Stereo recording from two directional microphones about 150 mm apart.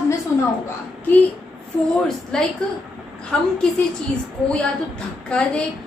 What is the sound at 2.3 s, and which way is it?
A woman's voice, 5° left (ahead or behind).